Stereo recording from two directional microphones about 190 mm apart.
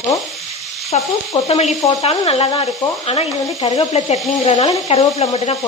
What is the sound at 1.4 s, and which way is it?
Speech, 30° left (ahead or behind).